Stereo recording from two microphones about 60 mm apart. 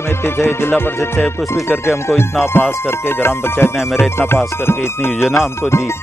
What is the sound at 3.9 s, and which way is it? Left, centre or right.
Music, left.